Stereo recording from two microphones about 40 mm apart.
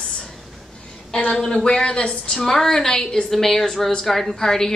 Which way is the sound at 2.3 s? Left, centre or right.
Centre.